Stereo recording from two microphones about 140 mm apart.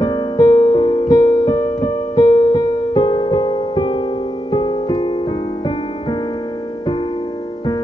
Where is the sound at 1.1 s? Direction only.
30° left (ahead or behind).